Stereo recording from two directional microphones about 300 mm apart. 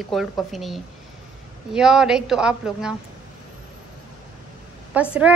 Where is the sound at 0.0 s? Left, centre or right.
Centre.